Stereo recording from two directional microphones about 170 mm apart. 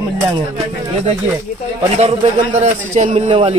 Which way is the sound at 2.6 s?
45° right (ahead or behind).